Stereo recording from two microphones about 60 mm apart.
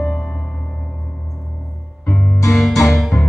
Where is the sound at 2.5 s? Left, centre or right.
Centre.